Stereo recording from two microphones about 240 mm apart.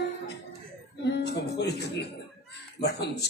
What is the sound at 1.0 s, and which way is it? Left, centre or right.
A man's voice, left.